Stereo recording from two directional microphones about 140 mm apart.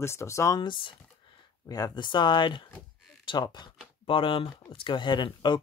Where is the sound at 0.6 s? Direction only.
35° left (ahead or behind).